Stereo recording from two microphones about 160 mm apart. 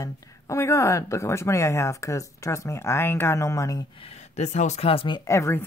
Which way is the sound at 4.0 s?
40° left (ahead or behind).